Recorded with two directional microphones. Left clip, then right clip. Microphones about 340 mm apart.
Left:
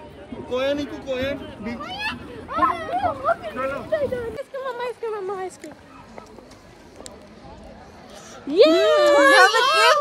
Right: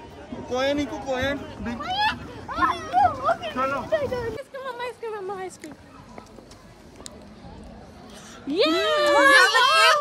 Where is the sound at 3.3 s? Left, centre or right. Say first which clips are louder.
Even; centre.